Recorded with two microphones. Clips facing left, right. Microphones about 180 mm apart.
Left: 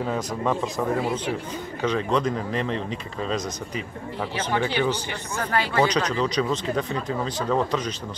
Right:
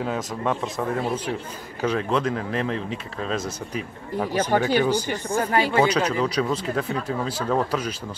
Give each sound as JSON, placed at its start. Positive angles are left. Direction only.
{"t": 0.0, "sound": "speech", "side_deg": 0}
{"t": 4.3, "sound": "speech", "side_deg": -45}
{"t": 5.3, "sound": "speech", "side_deg": -30}
{"t": 5.8, "sound": "speech", "side_deg": -10}